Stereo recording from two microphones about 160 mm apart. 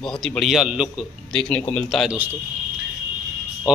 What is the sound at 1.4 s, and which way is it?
Speech, 10° left (ahead or behind).